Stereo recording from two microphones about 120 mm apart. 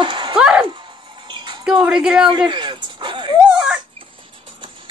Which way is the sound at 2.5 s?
40° right (ahead or behind).